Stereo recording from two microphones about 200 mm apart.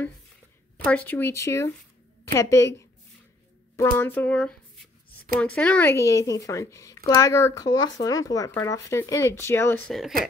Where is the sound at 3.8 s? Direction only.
10° left (ahead or behind).